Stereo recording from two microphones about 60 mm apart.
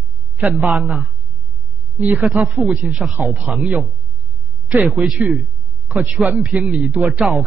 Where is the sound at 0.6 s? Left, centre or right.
Right.